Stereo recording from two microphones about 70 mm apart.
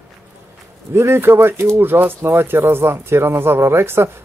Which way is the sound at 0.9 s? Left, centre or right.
Right.